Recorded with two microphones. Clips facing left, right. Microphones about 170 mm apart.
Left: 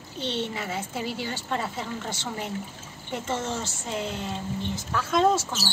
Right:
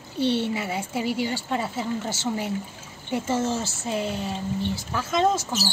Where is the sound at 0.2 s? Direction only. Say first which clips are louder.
Right 6 dB; 10° right (ahead or behind).